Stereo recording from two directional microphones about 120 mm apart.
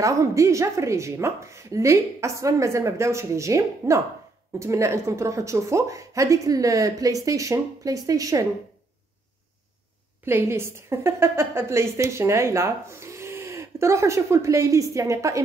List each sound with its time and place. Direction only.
0.0 s a woman's voice: 25° right (ahead or behind)
10.2 s a woman's voice: 20° right (ahead or behind)